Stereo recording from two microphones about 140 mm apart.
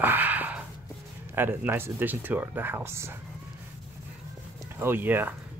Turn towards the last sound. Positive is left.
turn(degrees=-15)  # may be behind; listen again after turning